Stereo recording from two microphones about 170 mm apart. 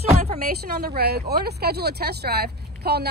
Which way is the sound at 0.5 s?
70° right (ahead or behind).